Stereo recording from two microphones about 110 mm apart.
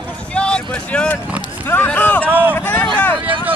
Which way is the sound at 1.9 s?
15° left (ahead or behind).